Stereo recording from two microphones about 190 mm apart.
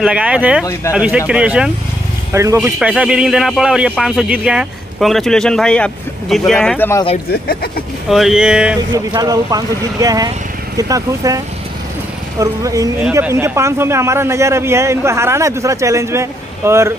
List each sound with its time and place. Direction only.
0.0 s a man's voice: 5° right (ahead or behind)
7.4 s speech: 50° left (ahead or behind)
8.1 s a man's voice: centre (ahead or behind)
8.9 s a man's voice: 20° right (ahead or behind)